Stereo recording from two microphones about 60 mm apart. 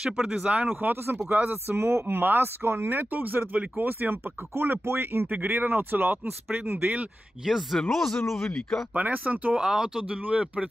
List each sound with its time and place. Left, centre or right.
0.0 s speech: centre
0.7 s speech: right
7.4 s speech: centre
8.9 s speech: right
9.6 s speech: centre